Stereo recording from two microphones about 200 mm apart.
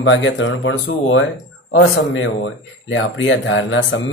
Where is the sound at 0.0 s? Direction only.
70° left (ahead or behind).